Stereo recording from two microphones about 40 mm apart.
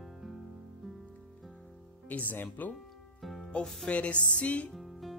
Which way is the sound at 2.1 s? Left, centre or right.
Left.